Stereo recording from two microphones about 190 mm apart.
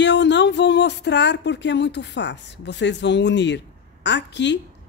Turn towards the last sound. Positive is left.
turn(degrees=70)  # may be behind; listen again after turning